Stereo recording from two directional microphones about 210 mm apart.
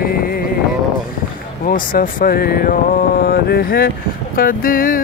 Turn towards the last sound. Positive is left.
turn(degrees=40)  # may be behind; listen again after turning